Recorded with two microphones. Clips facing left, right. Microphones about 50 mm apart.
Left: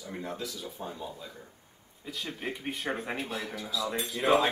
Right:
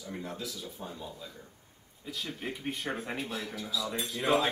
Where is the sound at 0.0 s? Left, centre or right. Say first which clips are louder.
Left 2 dB; centre.